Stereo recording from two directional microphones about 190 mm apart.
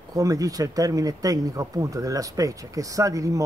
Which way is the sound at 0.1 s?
20° right (ahead or behind).